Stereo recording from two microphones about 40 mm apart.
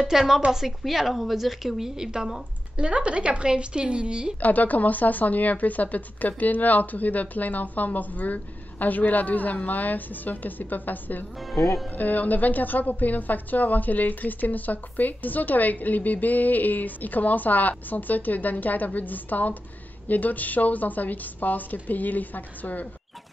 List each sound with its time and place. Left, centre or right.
0.0 s a woman's voice: centre
2.8 s speech: right
4.4 s a woman's voice: left